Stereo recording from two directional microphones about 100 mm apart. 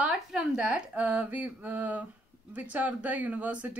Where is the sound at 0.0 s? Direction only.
5° right (ahead or behind).